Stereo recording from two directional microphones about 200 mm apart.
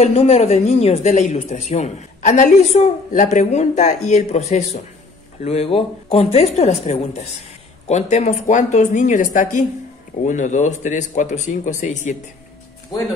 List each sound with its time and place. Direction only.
0.0 s speech: 30° left (ahead or behind)